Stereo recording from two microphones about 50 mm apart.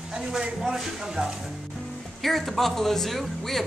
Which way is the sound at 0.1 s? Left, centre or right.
Centre.